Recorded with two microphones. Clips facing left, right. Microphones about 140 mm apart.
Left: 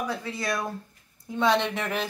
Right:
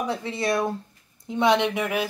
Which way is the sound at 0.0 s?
25° right (ahead or behind).